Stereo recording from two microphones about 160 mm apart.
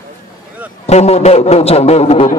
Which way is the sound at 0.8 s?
40° left (ahead or behind).